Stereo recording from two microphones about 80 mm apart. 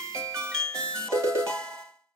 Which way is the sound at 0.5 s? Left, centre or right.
Centre.